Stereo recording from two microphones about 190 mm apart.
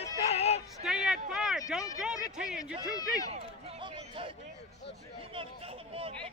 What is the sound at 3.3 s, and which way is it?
Run, 30° right (ahead or behind).